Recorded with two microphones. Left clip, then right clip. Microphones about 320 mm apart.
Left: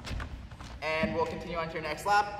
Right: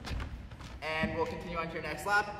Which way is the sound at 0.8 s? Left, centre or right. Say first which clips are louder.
Left 3 dB; left.